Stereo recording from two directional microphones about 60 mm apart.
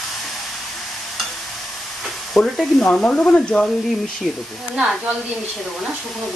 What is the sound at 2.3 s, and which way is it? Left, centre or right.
Stir, centre.